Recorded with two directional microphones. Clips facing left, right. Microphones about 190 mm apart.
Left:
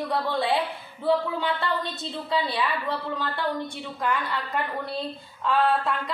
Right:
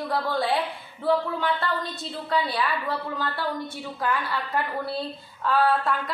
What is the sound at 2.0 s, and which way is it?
A woman's voice, centre (ahead or behind).